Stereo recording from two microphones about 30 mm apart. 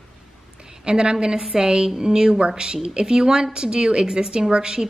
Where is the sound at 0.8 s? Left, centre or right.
Right.